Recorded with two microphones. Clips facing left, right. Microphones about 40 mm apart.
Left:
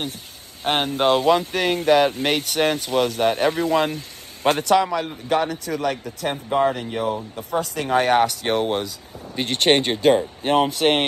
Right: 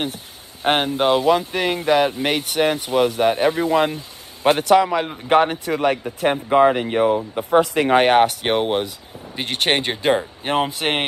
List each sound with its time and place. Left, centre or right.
0.7 s speech: right
0.9 s speech: centre; by 8.0 s right
8.0 s speech: right